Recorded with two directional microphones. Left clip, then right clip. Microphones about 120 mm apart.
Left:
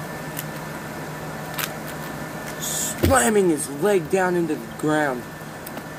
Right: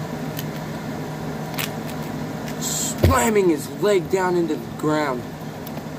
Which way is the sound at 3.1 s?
50° left (ahead or behind).